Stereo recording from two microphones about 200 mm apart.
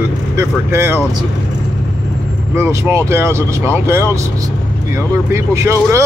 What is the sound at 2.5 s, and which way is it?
Speech, 15° right (ahead or behind).